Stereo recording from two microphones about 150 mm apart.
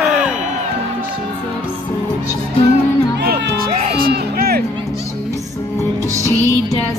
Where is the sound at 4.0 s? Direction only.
85° right.